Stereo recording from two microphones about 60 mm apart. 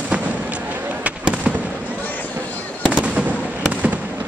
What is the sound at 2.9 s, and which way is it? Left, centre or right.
Fireworks, right.